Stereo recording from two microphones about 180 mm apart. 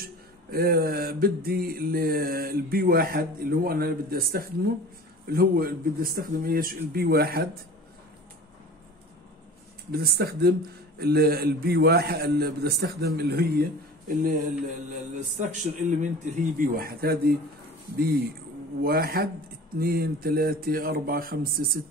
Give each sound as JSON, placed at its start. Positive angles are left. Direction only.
{"t": 0.5, "sound": "mantra", "side_deg": -60}
{"t": 9.8, "sound": "mantra", "side_deg": -60}
{"t": 15.1, "sound": "a man's voice", "side_deg": -45}
{"t": 16.5, "sound": "mantra", "side_deg": -50}